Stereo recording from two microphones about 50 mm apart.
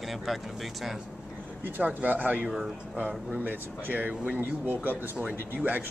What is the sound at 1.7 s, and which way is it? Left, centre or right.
A man's voice, right.